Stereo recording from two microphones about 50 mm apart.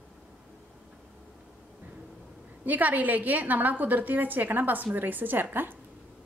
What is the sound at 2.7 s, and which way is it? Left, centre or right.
A woman's voice, right.